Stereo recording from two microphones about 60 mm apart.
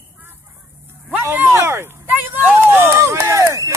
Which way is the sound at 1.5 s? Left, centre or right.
Right.